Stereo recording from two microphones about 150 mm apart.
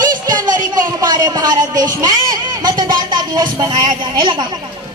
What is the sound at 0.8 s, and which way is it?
Speech, 25° right (ahead or behind).